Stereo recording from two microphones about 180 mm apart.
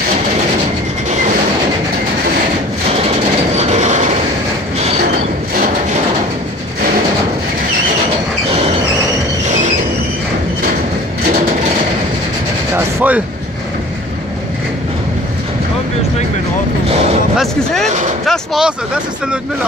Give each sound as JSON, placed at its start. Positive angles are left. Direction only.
{"t": 3.0, "sound": "train", "side_deg": -35}
{"t": 12.7, "sound": "rub", "side_deg": -10}
{"t": 18.2, "sound": "vehicle", "side_deg": 0}